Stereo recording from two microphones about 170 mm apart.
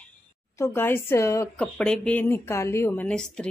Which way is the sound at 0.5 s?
15° left (ahead or behind).